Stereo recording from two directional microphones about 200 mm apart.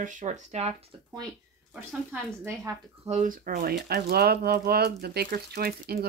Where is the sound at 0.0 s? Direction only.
40° right (ahead or behind).